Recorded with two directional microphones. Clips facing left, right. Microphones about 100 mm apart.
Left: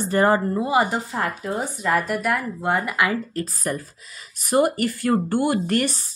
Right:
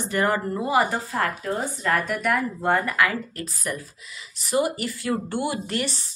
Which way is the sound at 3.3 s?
40° left (ahead or behind).